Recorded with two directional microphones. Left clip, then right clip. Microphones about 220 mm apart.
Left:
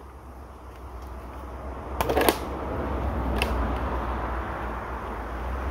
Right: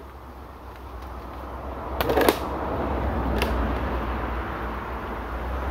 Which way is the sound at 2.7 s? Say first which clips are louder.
Right 3 dB; 25° left (ahead or behind).